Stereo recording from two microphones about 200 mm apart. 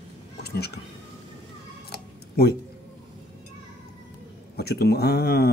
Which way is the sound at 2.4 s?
50° left (ahead or behind).